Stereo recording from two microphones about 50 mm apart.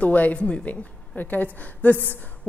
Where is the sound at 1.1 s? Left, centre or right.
Left.